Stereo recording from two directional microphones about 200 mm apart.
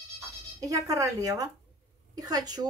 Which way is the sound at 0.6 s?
15° right (ahead or behind).